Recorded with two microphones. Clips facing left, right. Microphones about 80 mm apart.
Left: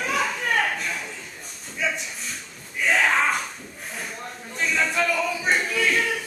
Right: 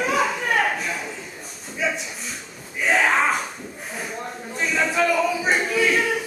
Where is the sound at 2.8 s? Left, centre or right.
Centre.